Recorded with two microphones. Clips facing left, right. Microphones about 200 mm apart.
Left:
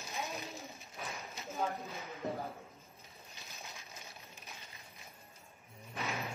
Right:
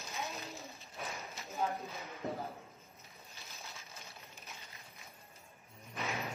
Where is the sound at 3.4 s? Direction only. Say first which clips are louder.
Left 1 dB; 15° left (ahead or behind).